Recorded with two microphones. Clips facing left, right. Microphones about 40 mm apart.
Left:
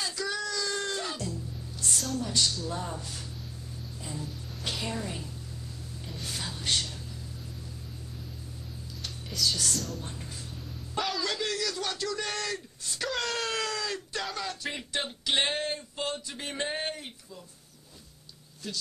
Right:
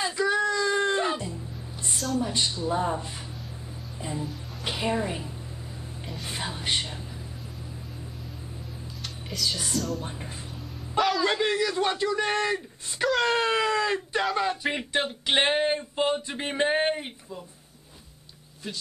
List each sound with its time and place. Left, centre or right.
0.0 s music: right
2.1 s speech: right
4.0 s music: right
4.6 s speech: right
9.3 s speech: centre
11.0 s a sound: centre
11.2 s speech: right